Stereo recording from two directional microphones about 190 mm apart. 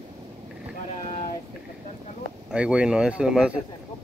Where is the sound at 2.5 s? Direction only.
5° right (ahead or behind).